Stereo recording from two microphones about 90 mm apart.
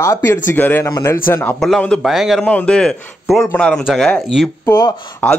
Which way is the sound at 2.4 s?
15° left (ahead or behind).